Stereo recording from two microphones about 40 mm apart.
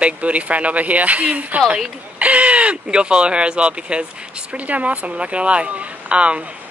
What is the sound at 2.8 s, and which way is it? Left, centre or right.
Speech, right.